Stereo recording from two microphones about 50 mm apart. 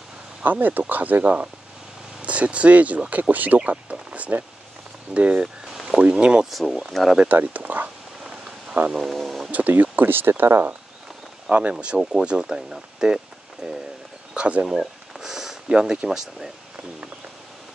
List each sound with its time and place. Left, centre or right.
0.4 s speech: right
5.4 s a sound: centre
5.9 s speech: centre
6.5 s speech: centre
7.3 s speech: right
8.2 s a sound: centre
8.9 s speech: centre
9.5 s speech: right
11.5 s speech: centre
14.7 s a sound: centre